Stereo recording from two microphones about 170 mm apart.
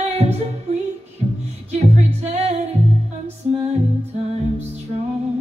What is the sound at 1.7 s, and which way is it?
Music, 40° right (ahead or behind).